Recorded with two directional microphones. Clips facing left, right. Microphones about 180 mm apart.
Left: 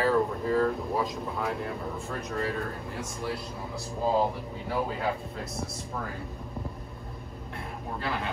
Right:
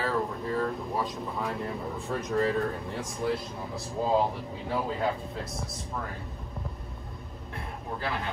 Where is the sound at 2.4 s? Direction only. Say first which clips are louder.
Right 5 dB; 35° right (ahead or behind).